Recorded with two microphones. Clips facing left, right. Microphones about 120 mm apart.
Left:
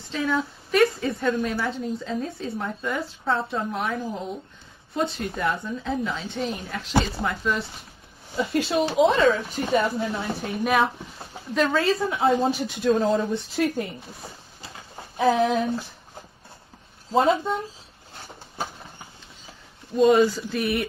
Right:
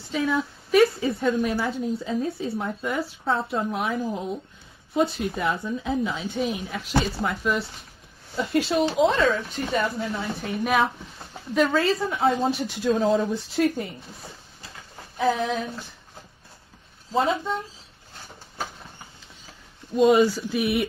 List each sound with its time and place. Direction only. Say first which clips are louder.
0.1 s a woman's voice: right 1 dB; 5° right (ahead or behind)
15.1 s speech: left 3 dB; 10° left (ahead or behind)
17.1 s speech: left 3 dB; 15° left (ahead or behind)
20.0 s a woman's voice: even; centre (ahead or behind)